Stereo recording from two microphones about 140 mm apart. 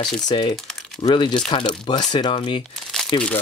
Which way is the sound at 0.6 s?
5° left (ahead or behind).